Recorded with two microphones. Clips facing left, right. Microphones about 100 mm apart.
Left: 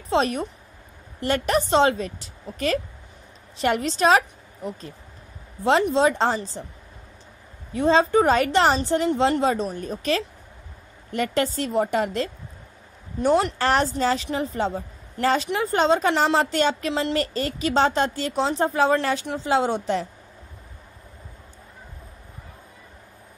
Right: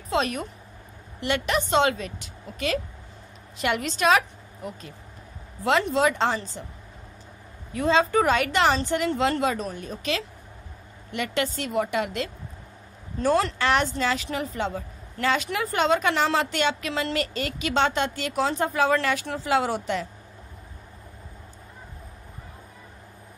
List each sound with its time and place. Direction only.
0.1 s a woman's voice: 30° left (ahead or behind)
5.6 s a woman's voice: 30° left (ahead or behind)
7.7 s a woman's voice: 30° left (ahead or behind)
13.2 s speech: 20° left (ahead or behind)
13.6 s a woman's voice: 35° left (ahead or behind)